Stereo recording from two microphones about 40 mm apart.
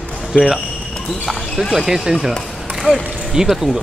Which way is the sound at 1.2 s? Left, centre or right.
Centre.